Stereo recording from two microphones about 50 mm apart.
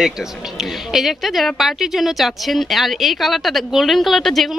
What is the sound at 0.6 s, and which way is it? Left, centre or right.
A woman's voice, centre.